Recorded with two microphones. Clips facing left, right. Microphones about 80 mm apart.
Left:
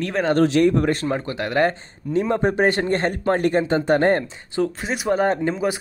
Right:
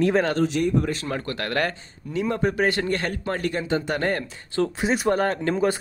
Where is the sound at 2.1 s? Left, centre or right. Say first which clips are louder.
Left 4 dB; left.